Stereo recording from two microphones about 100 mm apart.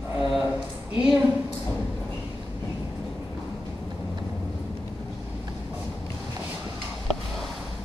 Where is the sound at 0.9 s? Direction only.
10° right (ahead or behind).